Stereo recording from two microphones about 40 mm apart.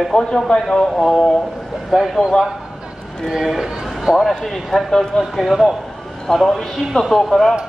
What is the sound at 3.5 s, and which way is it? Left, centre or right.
Speech, centre.